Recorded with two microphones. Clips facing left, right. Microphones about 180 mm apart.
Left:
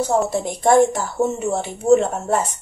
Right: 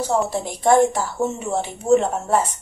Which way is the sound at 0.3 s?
45° left (ahead or behind).